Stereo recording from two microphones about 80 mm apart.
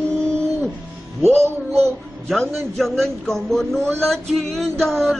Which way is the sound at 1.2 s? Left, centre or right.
Right.